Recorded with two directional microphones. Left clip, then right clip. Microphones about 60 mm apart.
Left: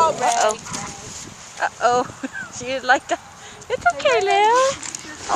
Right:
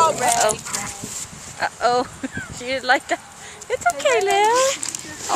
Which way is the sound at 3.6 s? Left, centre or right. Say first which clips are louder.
Left 1 dB; centre.